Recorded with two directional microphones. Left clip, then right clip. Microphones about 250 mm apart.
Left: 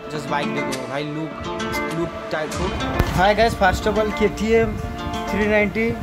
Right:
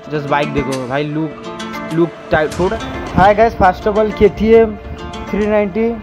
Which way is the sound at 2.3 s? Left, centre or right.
Right.